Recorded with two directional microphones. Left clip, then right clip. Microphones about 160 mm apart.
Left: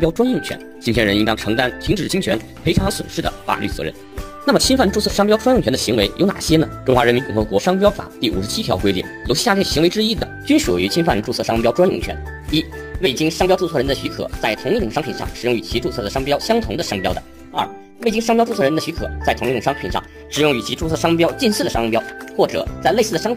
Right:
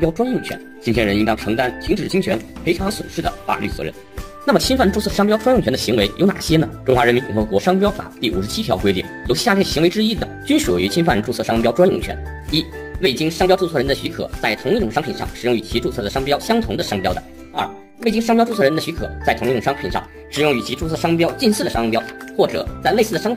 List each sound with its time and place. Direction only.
0.0 s speech: 65° left (ahead or behind)
4.5 s speech: 50° left (ahead or behind)
11.0 s speech: 30° left (ahead or behind)
13.0 s speech: 30° left (ahead or behind)